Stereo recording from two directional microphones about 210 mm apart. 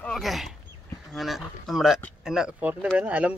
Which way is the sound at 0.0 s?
Centre (ahead or behind).